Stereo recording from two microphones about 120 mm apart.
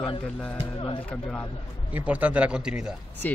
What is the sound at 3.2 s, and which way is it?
Speech, 15° left (ahead or behind).